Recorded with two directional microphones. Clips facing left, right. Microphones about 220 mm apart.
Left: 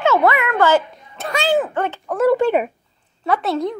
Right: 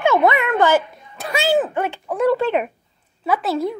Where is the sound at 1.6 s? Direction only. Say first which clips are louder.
Even; 10° right (ahead or behind).